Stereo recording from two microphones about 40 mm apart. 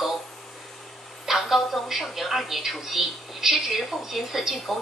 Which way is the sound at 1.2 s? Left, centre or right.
Centre.